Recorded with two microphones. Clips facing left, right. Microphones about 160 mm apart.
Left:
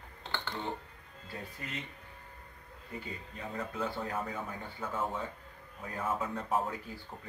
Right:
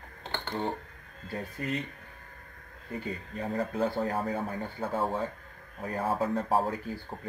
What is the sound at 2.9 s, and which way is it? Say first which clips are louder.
Speech: right 7 dB; 40° right (ahead or behind).